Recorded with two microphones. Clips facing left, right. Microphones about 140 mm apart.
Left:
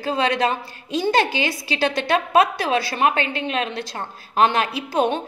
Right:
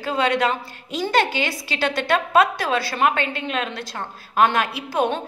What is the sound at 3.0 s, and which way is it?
A woman's voice, 20° left (ahead or behind).